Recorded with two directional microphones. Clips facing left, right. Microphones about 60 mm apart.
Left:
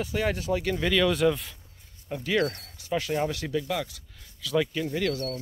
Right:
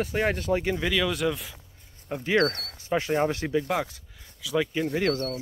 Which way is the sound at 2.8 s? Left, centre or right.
Right.